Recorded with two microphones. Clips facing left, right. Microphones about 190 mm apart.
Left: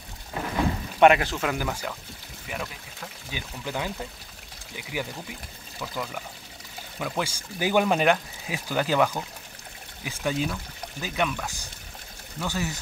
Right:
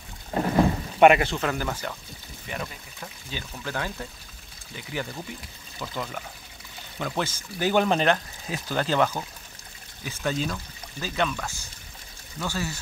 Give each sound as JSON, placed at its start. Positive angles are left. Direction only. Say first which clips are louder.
{"t": 0.3, "sound": "a sound", "louder": "right 6 dB", "side_deg": -35}
{"t": 0.9, "sound": "speech", "louder": "right 1 dB", "side_deg": -5}
{"t": 3.3, "sound": "speech", "louder": "even", "side_deg": 15}
{"t": 4.9, "sound": "speech", "louder": "even", "side_deg": 10}